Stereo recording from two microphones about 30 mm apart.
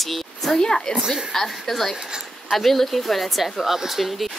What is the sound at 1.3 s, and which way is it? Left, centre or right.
Speech, centre.